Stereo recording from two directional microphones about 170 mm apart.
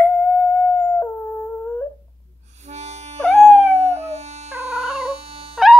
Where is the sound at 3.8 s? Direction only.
40° right (ahead or behind).